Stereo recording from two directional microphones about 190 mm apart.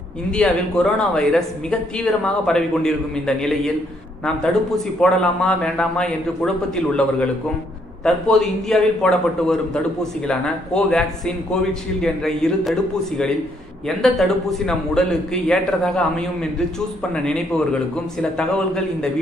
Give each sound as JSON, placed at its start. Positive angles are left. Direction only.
{"t": 0.4, "sound": "a man's voice", "side_deg": 5}
{"t": 13.8, "sound": "a man's voice", "side_deg": 0}
{"t": 17.1, "sound": "a man's voice", "side_deg": 5}
{"t": 18.4, "sound": "a man's voice", "side_deg": 5}